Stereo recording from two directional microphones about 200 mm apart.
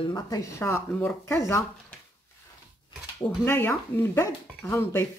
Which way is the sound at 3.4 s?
10° left (ahead or behind).